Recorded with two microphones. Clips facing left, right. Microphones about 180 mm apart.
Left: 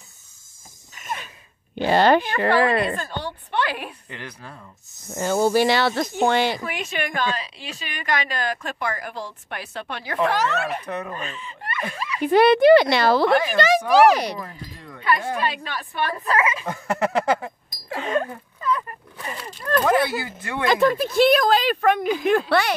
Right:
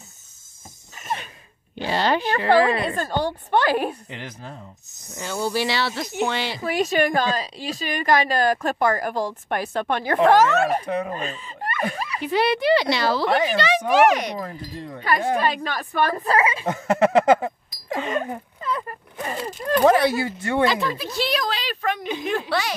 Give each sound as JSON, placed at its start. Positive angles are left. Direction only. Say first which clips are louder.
{"t": 0.9, "sound": "a sound", "louder": "right 3 dB", "side_deg": -30}
{"t": 1.8, "sound": "speech", "louder": "left 5 dB", "side_deg": 55}
{"t": 3.0, "sound": "a woman's voice", "louder": "right 6 dB", "side_deg": -45}
{"t": 4.1, "sound": "speech", "louder": "right 2 dB", "side_deg": -25}
{"t": 5.1, "sound": "speech", "louder": "left 6 dB", "side_deg": 50}
{"t": 6.6, "sound": "a woman's voice", "louder": "right 8 dB", "side_deg": -40}
{"t": 12.2, "sound": "speech", "louder": "left 7 dB", "side_deg": 50}
{"t": 13.6, "sound": "a child's voice", "louder": "left 3 dB", "side_deg": 40}
{"t": 15.0, "sound": "a woman's voice", "louder": "right 1 dB", "side_deg": -40}
{"t": 18.2, "sound": "a sound", "louder": "left 1 dB", "side_deg": -25}
{"t": 19.3, "sound": "speech", "louder": "right 1 dB", "side_deg": -25}
{"t": 20.6, "sound": "a woman's voice", "louder": "left 8 dB", "side_deg": 50}